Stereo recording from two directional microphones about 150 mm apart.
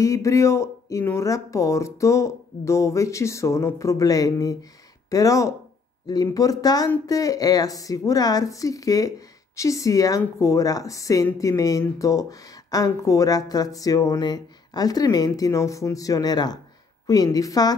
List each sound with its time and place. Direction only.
0.0 s speech: 20° left (ahead or behind)